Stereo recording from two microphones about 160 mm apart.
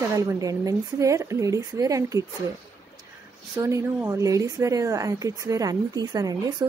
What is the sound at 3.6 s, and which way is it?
A woman's voice, 20° right (ahead or behind).